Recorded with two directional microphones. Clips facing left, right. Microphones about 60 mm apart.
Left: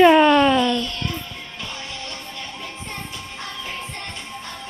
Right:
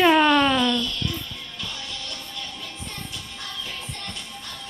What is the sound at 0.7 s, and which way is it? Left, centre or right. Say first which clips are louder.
Music: left 2 dB; left.